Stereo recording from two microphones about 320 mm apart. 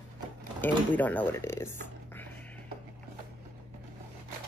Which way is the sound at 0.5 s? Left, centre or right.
Centre.